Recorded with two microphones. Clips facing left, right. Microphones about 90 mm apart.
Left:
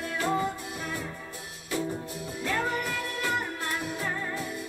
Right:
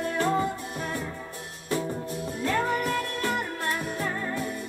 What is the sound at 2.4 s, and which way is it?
Music, 40° right (ahead or behind).